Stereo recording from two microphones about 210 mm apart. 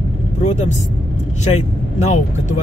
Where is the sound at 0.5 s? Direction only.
35° left (ahead or behind).